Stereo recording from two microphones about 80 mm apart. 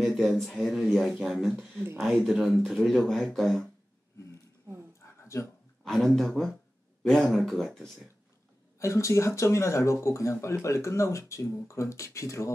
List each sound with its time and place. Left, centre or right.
0.0 s speech: centre
5.0 s a sound: left
5.9 s speech: centre
8.7 s speech: left